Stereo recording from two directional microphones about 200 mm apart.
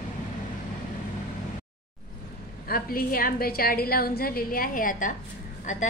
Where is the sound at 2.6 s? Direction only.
50° left (ahead or behind).